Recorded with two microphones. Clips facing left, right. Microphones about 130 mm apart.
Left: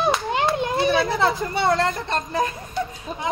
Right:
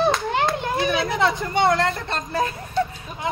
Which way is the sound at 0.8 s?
30° left (ahead or behind).